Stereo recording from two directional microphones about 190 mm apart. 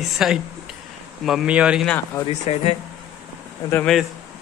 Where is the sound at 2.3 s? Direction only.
35° left (ahead or behind).